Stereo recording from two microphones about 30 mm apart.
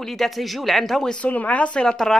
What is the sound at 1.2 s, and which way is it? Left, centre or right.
Speech, left.